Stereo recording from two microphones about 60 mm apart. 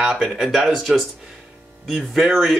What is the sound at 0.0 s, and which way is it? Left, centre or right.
Speech, centre.